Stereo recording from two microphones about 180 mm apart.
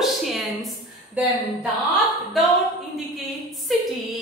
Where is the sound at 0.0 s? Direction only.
Centre (ahead or behind).